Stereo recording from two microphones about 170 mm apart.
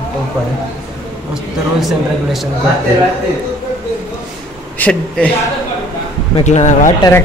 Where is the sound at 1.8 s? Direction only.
Centre (ahead or behind).